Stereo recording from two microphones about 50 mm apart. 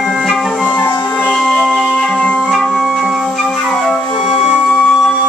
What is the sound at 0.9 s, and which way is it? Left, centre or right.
Music, left.